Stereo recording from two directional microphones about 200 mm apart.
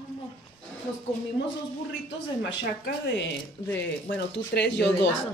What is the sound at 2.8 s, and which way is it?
Speech, 65° left (ahead or behind).